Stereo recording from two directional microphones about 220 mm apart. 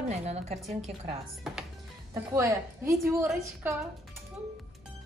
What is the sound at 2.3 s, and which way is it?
A woman's voice, 15° right (ahead or behind).